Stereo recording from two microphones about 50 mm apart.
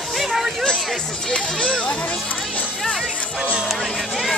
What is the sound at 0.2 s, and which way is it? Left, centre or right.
Hubbub, centre.